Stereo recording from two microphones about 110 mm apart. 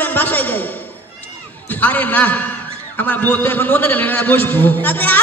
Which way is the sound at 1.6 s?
15° left (ahead or behind).